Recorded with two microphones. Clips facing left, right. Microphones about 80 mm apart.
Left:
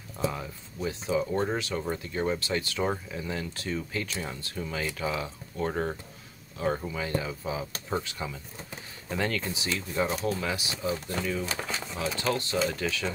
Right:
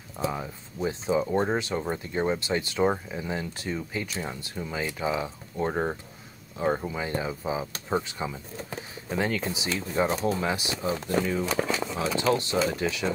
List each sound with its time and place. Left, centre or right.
0.2 s speech: centre
12.0 s speech: right